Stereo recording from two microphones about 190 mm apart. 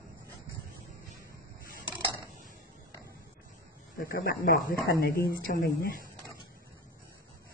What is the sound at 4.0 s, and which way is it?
Speech, 50° left (ahead or behind).